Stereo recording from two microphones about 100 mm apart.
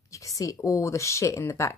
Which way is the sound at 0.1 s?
35° left (ahead or behind).